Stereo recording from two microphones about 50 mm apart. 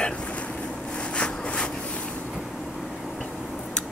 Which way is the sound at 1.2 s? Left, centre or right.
Left.